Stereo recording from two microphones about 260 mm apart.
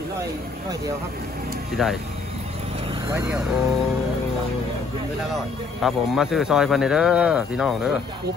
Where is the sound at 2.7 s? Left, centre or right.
Centre.